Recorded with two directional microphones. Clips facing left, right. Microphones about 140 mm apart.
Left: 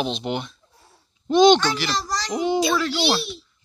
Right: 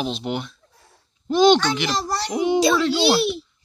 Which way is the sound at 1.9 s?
60° right (ahead or behind).